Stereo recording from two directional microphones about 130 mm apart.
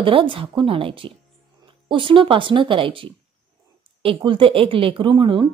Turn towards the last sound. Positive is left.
turn(degrees=-40)  # may be behind; listen again after turning